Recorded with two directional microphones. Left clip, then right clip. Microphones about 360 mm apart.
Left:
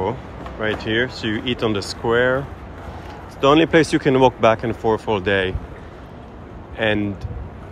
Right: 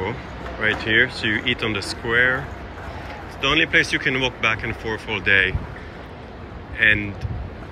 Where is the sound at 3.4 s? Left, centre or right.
Centre.